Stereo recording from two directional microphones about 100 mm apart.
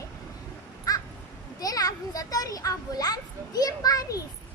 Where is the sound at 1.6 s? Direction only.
40° left (ahead or behind).